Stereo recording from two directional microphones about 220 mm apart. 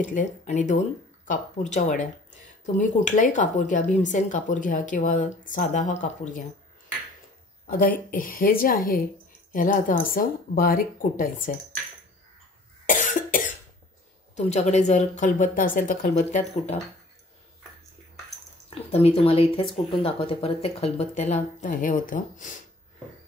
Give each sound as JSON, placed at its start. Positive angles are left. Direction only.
{"t": 0.1, "sound": "speech", "side_deg": 35}
{"t": 7.6, "sound": "speech", "side_deg": 40}
{"t": 12.8, "sound": "cough", "side_deg": 35}
{"t": 14.3, "sound": "speech", "side_deg": 30}
{"t": 18.7, "sound": "speech", "side_deg": 25}